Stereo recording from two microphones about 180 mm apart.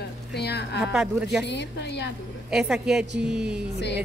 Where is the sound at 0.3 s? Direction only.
65° left (ahead or behind).